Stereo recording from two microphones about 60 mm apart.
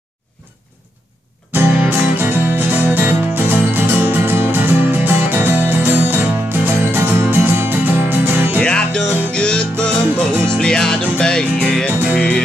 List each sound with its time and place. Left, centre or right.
1.5 s music: right
8.5 s music: centre